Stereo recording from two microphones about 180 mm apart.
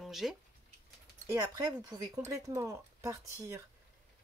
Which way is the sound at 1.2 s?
20° right (ahead or behind).